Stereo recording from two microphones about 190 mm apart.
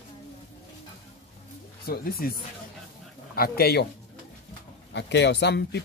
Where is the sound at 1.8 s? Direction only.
50° left (ahead or behind).